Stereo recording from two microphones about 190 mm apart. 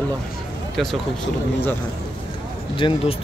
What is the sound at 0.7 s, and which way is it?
Speech, centre (ahead or behind).